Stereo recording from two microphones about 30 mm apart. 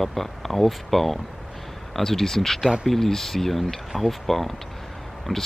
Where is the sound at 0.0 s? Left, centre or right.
Centre.